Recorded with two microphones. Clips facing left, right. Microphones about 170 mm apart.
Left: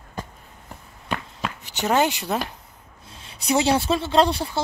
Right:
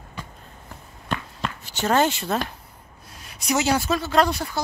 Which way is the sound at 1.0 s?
10° left (ahead or behind).